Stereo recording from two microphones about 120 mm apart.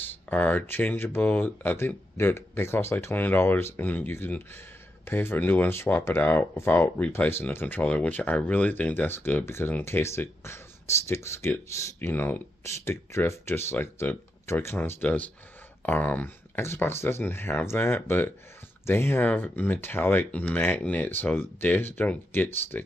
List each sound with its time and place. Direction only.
0.1 s speech: 15° left (ahead or behind)